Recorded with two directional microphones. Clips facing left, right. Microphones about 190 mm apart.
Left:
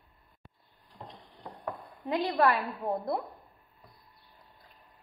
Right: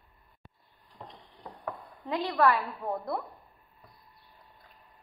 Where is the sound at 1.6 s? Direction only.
20° left (ahead or behind).